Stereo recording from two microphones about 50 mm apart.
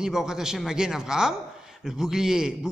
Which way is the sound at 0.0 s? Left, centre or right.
Centre.